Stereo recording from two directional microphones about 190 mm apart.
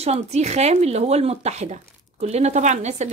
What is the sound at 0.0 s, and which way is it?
Speech, 35° right (ahead or behind).